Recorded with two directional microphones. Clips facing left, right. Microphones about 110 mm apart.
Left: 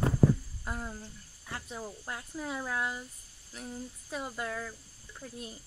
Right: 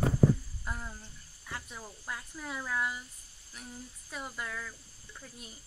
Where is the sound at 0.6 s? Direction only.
30° left (ahead or behind).